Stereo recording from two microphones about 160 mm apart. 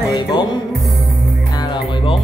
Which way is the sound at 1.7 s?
35° left (ahead or behind).